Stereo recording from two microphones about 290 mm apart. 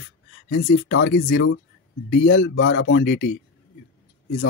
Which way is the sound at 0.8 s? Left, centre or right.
Left.